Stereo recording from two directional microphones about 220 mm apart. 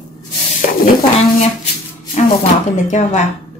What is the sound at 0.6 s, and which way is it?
Speech, 35° left (ahead or behind).